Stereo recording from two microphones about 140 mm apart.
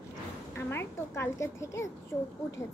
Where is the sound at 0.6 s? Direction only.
15° left (ahead or behind).